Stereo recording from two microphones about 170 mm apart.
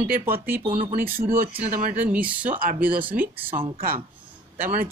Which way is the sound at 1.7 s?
50° right (ahead or behind).